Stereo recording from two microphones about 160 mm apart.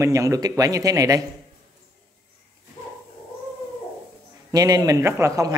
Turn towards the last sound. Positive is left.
turn(degrees=-20)  # may be behind; listen again after turning